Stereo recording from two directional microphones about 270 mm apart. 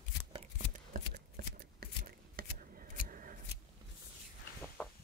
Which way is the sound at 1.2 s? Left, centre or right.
Right.